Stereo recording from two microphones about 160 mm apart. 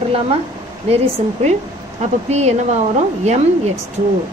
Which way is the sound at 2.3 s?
45° right (ahead or behind).